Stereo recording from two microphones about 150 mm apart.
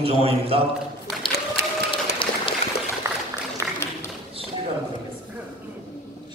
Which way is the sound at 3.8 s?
15° left (ahead or behind).